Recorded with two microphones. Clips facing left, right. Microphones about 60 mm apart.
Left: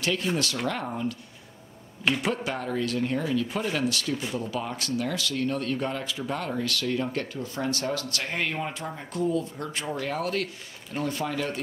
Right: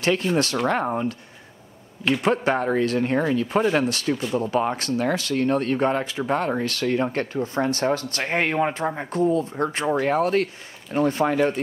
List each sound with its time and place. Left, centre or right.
0.0 s speech: right
2.2 s speech: right